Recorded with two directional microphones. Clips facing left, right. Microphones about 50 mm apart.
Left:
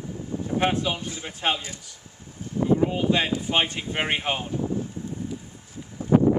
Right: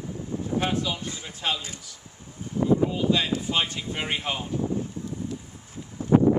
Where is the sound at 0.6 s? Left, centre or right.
Left.